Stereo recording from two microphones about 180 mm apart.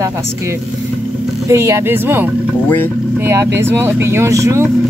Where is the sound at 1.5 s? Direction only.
15° right (ahead or behind).